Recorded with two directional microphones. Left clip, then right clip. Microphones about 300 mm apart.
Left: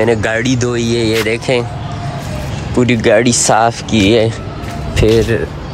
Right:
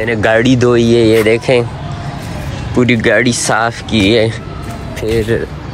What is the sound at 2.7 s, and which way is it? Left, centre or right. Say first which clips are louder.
Speech: even; centre.